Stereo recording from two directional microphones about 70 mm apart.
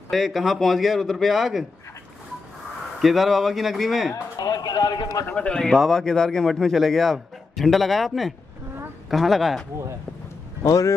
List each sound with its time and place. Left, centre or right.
0.1 s speech: centre
3.0 s speech: centre
4.4 s a sound: left
5.3 s speech: centre
10.6 s speech: left